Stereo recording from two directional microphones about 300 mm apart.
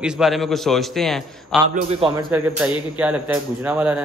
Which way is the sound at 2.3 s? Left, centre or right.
Centre.